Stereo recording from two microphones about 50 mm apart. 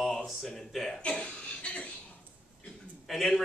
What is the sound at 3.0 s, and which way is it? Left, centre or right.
Speech, centre.